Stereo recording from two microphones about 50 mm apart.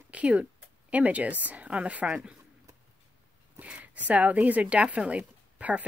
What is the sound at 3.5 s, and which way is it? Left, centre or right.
A woman's voice, right.